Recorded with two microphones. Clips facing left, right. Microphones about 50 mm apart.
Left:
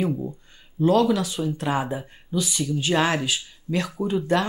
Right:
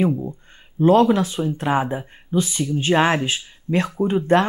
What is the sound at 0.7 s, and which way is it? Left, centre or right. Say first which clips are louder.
Speech: right 4 dB; right.